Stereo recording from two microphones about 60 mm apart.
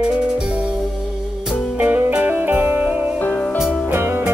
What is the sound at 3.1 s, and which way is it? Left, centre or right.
Music, left.